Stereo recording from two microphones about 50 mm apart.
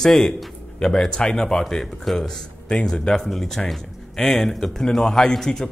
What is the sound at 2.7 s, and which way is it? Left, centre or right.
Speech, left.